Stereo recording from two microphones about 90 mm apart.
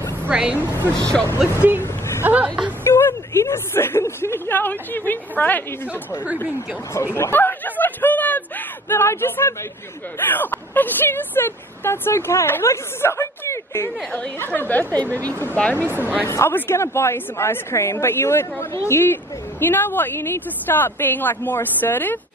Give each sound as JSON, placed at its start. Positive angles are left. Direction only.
{"t": 0.3, "sound": "a woman's voice", "side_deg": -10}
{"t": 0.9, "sound": "speech", "side_deg": 10}
{"t": 1.8, "sound": "a sound", "side_deg": 30}
{"t": 2.2, "sound": "speech", "side_deg": -15}
{"t": 2.8, "sound": "speech", "side_deg": 25}
{"t": 7.2, "sound": "a sound", "side_deg": 25}
{"t": 10.1, "sound": "speech", "side_deg": 20}
{"t": 14.1, "sound": "speech", "side_deg": 20}